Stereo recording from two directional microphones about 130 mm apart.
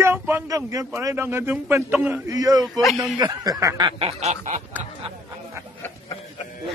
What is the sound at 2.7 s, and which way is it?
Speech, centre (ahead or behind).